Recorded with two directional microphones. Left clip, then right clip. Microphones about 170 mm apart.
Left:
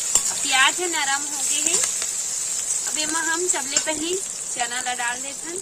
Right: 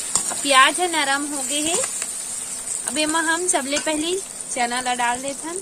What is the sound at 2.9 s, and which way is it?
A woman's voice, 45° right (ahead or behind).